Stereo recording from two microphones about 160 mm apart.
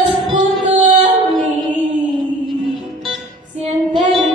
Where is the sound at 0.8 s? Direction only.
50° right (ahead or behind).